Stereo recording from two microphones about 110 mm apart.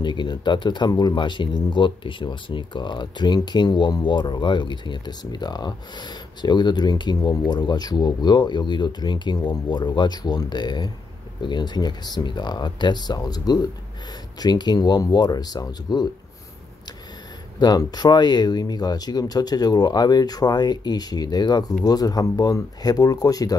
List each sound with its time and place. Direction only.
0.0 s speech: 45° left (ahead or behind)
17.6 s speech: 40° left (ahead or behind)